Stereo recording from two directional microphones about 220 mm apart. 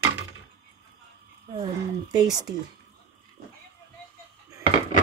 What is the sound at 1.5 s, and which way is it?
Speech, 20° right (ahead or behind).